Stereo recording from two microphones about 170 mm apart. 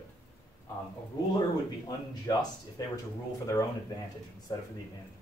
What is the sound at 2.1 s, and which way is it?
Speech, 20° left (ahead or behind).